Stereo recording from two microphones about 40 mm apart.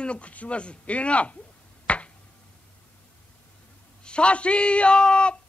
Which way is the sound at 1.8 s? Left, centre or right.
Left.